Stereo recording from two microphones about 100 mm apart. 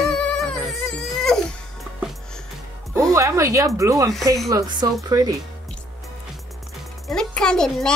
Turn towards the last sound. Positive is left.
turn(degrees=5)  # may be behind; listen again after turning